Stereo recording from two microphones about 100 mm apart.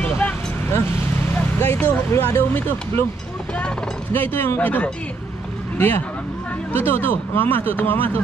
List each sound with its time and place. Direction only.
0.0 s vehicle: 20° left (ahead or behind)
3.5 s speech: 15° left (ahead or behind)